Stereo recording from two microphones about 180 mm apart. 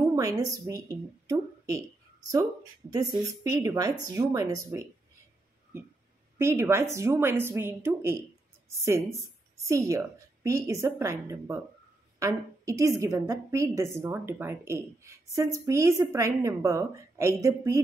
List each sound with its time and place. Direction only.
0.0 s a sound: 15° right (ahead or behind)
0.7 s speech: 20° right (ahead or behind)
3.2 s speech: 20° right (ahead or behind)
6.3 s a woman's voice: 15° right (ahead or behind)